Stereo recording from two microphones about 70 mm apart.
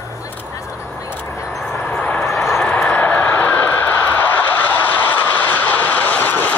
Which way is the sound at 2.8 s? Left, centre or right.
Centre.